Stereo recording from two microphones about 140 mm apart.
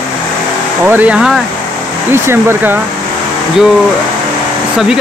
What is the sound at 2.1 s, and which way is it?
Speech, 15° right (ahead or behind).